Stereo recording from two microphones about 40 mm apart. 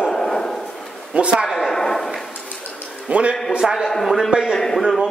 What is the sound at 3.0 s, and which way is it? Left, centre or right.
Speech, right.